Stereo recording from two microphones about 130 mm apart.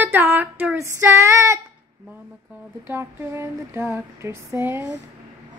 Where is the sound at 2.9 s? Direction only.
15° right (ahead or behind).